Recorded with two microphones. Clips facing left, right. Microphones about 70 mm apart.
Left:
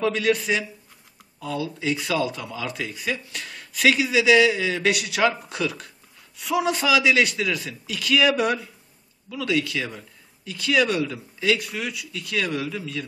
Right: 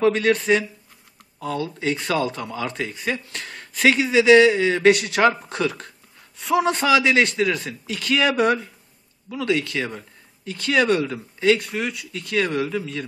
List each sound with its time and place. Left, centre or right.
0.0 s speech: right